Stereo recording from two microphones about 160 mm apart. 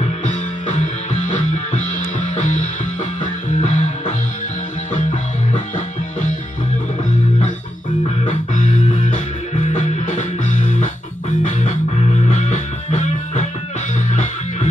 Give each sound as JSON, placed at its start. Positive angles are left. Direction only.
{"t": 0.0, "sound": "music", "side_deg": 50}
{"t": 9.7, "sound": "music", "side_deg": 50}
{"t": 12.3, "sound": "music", "side_deg": 50}